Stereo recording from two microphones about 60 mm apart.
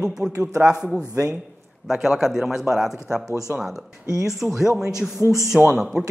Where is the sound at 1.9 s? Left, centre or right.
Centre.